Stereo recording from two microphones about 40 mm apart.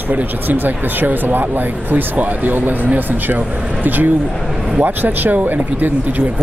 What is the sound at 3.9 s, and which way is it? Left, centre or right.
Speech, right.